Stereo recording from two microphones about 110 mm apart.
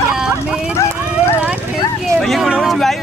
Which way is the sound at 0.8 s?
20° left (ahead or behind).